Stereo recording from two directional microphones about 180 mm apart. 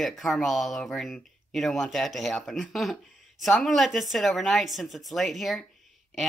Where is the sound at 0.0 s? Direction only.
Centre (ahead or behind).